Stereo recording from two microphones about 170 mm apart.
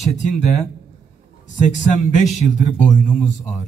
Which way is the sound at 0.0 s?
45° left (ahead or behind).